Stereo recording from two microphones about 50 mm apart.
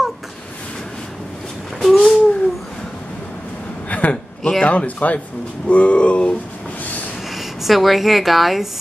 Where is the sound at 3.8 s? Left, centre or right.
Left.